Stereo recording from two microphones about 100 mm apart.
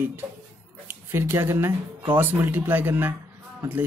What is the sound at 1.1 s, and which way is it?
Speech, 25° right (ahead or behind).